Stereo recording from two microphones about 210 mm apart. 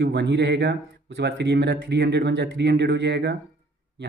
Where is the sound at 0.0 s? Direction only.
55° right (ahead or behind).